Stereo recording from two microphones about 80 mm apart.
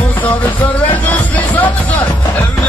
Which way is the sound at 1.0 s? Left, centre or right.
Left.